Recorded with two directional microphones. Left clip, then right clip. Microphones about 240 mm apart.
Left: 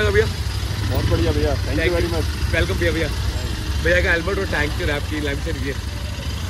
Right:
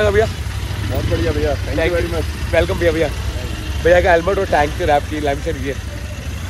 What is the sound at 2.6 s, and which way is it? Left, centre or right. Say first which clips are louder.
Speech: right 5 dB; right.